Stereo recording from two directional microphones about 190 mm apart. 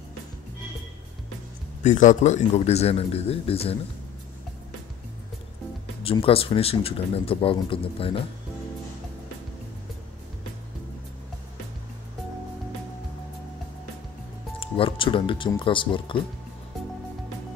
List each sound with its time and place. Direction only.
1.8 s a man's voice: 40° left (ahead or behind)
6.0 s speech: 30° left (ahead or behind)
14.6 s speech: 30° left (ahead or behind)